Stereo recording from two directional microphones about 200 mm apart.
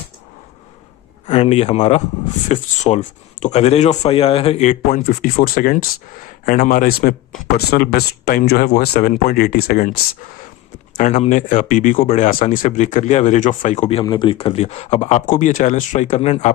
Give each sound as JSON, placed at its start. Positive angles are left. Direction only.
{"t": 1.2, "sound": "speech", "side_deg": 30}
{"t": 11.0, "sound": "speech", "side_deg": 35}